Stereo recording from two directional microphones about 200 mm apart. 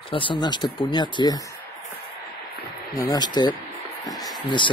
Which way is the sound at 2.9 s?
15° left (ahead or behind).